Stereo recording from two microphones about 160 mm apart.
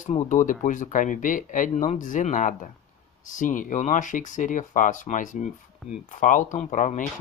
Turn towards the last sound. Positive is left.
turn(degrees=50)  # may be behind; listen again after turning